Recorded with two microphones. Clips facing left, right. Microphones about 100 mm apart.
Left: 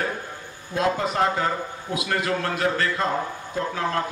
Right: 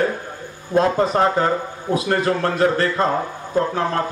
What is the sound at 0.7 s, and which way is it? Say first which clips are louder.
A man's voice: right 6 dB; 40° right (ahead or behind).